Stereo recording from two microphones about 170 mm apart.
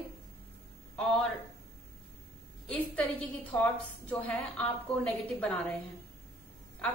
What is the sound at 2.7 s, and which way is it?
A woman's voice, 10° left (ahead or behind).